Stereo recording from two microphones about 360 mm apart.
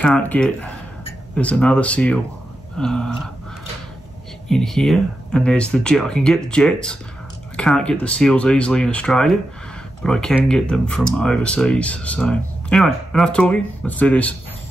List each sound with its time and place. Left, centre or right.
0.0 s speech: centre
4.5 s speech: centre